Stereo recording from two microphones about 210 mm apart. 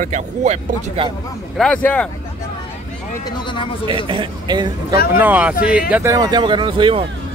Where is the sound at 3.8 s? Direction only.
25° right (ahead or behind).